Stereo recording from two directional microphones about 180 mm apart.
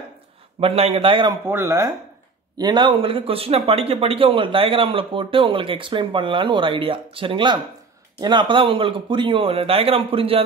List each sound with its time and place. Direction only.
0.6 s a man's voice: 35° right (ahead or behind)
1.5 s speech: 15° right (ahead or behind)
2.5 s speech: 25° right (ahead or behind)